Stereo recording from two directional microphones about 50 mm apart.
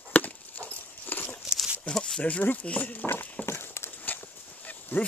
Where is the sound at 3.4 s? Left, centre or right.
Left.